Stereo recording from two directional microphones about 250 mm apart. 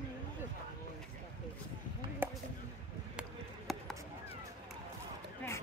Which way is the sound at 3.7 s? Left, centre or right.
Centre.